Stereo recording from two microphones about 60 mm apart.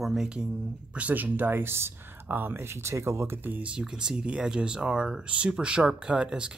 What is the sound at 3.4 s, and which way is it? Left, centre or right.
Speech, right.